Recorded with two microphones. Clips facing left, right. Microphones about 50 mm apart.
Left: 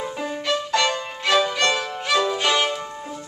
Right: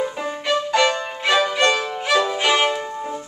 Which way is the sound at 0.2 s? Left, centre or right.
Centre.